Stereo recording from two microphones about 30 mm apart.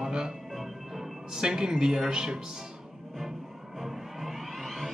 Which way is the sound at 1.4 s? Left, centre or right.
Right.